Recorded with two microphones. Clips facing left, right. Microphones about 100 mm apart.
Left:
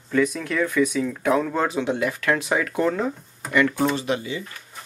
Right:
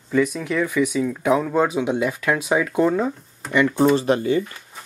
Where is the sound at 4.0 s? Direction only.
45° right (ahead or behind).